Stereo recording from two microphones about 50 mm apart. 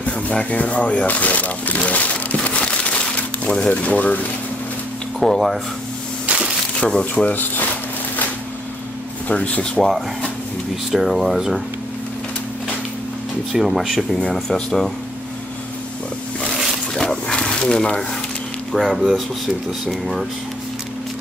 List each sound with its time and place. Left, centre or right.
0.0 s a sound: left
3.8 s speech: left
5.2 s speech: centre
6.8 s speech: centre
7.2 s speech: left
9.3 s speech: left
9.8 s speech: centre
10.9 s speech: centre
13.5 s speech: centre
16.9 s dog: centre
18.7 s speech: centre